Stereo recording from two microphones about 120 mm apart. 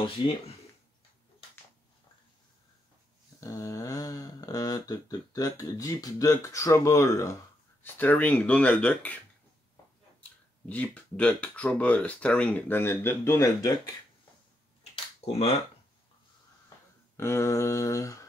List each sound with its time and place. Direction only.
3.3 s a sound: 30° left (ahead or behind)
7.8 s speech: 15° left (ahead or behind)
10.7 s speech: 10° left (ahead or behind); by 13.7 s 30° left (ahead or behind)
14.8 s finger snapping: 60° left (ahead or behind)
17.2 s mantra: 20° left (ahead or behind)